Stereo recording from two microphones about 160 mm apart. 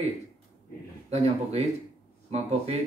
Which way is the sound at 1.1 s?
40° right (ahead or behind).